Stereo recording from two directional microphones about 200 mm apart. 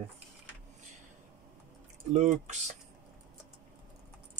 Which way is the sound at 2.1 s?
35° right (ahead or behind).